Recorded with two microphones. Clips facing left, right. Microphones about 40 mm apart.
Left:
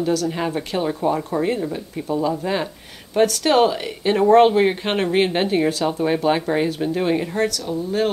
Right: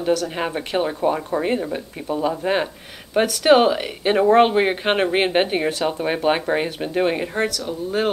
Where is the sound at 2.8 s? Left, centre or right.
Centre.